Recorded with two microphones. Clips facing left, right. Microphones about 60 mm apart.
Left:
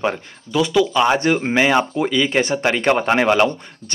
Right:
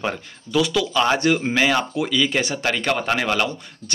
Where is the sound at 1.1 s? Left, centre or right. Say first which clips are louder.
Left 2 dB; left.